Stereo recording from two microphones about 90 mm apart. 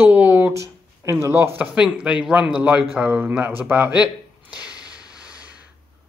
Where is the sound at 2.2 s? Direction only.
10° right (ahead or behind).